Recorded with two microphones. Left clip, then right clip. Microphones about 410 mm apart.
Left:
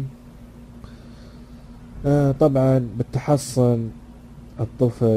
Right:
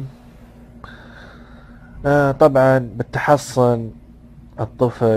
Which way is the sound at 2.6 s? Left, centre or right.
Right.